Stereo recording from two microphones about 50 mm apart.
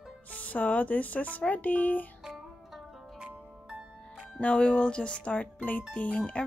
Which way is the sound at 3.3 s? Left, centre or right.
Right.